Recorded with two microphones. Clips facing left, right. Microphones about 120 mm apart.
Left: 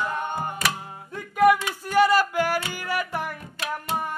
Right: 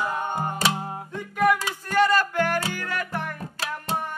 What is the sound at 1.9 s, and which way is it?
Music, 10° left (ahead or behind).